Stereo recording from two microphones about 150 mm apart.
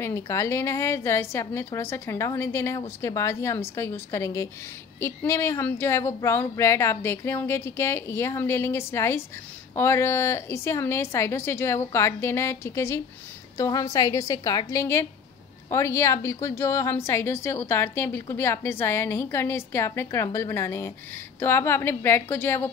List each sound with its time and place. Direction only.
0.0 s a woman's voice: 20° left (ahead or behind)